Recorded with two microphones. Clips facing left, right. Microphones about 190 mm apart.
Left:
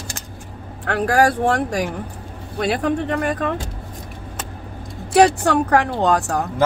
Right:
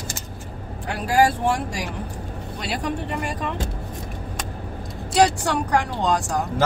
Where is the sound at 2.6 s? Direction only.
60° left (ahead or behind).